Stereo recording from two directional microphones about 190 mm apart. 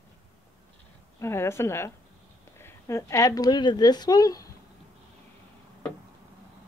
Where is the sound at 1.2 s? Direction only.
15° left (ahead or behind).